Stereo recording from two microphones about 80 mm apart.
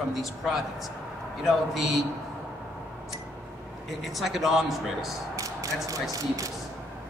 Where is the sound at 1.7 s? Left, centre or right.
Centre.